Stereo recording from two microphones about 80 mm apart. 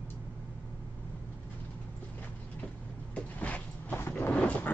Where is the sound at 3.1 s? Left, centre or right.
Centre.